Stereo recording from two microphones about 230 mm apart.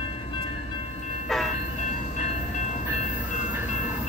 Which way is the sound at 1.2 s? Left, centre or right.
Centre.